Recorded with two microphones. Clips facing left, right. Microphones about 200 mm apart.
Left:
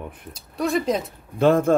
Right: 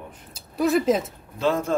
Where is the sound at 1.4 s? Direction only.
55° left (ahead or behind).